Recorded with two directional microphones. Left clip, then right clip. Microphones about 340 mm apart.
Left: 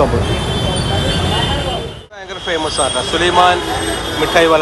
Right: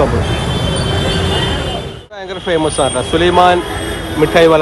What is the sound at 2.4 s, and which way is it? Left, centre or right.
Speech, centre.